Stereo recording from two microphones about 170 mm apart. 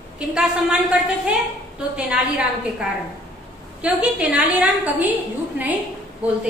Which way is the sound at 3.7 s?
5° right (ahead or behind).